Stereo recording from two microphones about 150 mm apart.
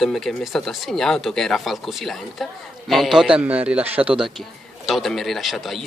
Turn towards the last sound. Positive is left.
turn(degrees=0)  # may be behind; listen again after turning